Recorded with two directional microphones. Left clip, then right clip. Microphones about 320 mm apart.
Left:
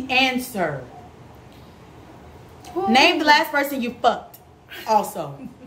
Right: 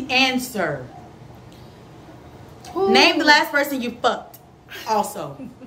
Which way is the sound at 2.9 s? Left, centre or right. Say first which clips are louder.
Right 1 dB; centre.